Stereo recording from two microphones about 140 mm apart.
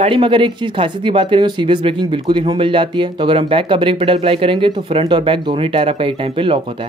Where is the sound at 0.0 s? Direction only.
40° right (ahead or behind).